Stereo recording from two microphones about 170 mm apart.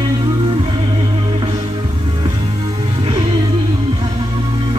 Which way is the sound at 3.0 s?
30° right (ahead or behind).